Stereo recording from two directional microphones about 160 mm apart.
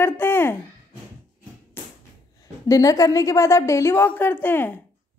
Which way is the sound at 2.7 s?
20° left (ahead or behind).